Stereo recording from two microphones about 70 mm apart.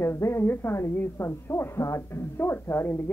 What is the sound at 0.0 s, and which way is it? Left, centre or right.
A woman's voice, left.